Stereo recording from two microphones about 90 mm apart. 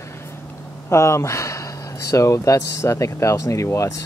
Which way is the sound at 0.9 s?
30° left (ahead or behind).